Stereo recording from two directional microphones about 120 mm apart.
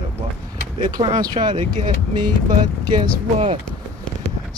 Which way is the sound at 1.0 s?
35° right (ahead or behind).